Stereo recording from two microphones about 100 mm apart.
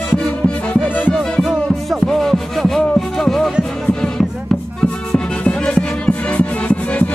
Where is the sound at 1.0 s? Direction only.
15° left (ahead or behind).